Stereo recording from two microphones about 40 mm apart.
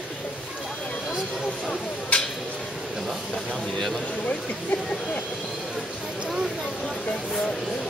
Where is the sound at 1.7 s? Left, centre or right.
Left.